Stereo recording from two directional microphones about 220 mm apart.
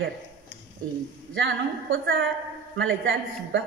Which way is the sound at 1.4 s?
60° right (ahead or behind).